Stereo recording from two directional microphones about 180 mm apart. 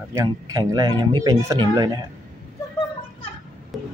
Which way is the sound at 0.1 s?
15° right (ahead or behind).